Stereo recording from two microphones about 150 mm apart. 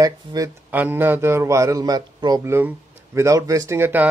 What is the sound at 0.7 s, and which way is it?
Speech, 10° right (ahead or behind).